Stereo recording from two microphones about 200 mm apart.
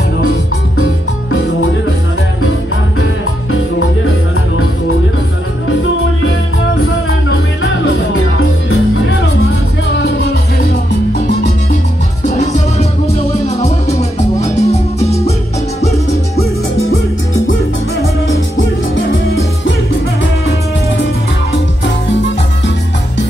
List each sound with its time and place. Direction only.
11.1 s music: 55° left (ahead or behind)
12.7 s music: 30° left (ahead or behind)